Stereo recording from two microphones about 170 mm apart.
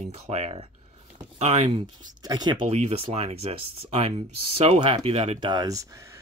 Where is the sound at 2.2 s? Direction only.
20° right (ahead or behind).